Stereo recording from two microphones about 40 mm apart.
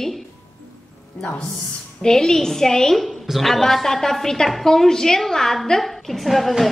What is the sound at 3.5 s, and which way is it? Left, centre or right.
A woman's voice, centre.